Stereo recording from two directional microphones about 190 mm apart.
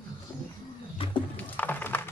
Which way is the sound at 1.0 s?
30° left (ahead or behind).